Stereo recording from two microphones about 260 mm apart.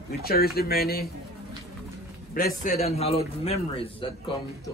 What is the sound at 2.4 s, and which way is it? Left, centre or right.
Speech, left.